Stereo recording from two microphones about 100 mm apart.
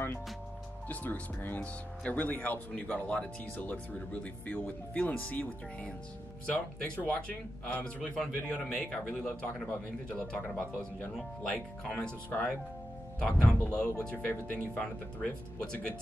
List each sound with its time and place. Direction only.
0.8 s speech: 15° left (ahead or behind)